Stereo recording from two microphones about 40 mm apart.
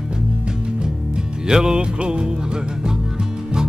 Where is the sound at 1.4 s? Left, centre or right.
Centre.